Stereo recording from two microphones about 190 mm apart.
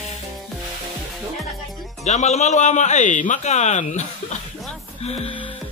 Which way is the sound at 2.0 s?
35° left (ahead or behind).